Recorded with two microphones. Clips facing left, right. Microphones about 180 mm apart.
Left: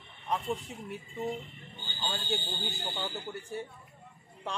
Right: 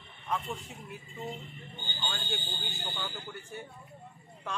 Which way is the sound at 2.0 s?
35° left (ahead or behind).